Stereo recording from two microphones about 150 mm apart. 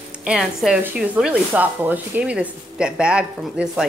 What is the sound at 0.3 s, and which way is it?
Speech, 5° right (ahead or behind).